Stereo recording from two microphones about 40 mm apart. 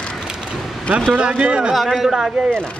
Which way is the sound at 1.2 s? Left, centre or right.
Right.